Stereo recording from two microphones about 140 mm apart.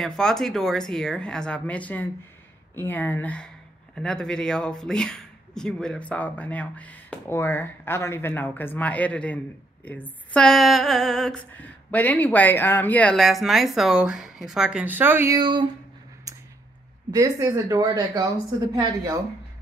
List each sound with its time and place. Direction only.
0.0 s speech: 5° left (ahead or behind); by 15.3 s 15° right (ahead or behind)
15.3 s speech: 35° right (ahead or behind)
16.3 s a sound: 25° right (ahead or behind)
17.1 s speech: 25° right (ahead or behind)